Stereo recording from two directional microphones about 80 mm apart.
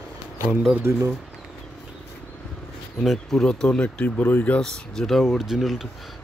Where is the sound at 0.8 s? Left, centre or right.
Right.